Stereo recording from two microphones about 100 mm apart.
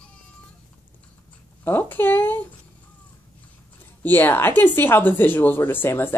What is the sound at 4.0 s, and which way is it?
Speech, 20° left (ahead or behind).